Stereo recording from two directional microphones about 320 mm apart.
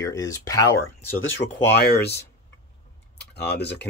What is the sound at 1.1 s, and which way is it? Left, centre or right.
Speech, left.